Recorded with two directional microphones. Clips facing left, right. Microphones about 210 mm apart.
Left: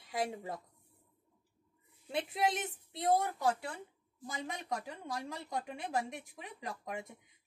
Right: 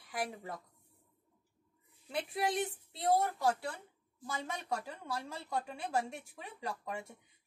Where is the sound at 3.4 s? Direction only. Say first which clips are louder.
Even; 40° right (ahead or behind).